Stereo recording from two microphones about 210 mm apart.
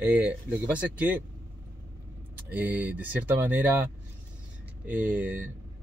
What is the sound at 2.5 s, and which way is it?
Speech, 10° right (ahead or behind).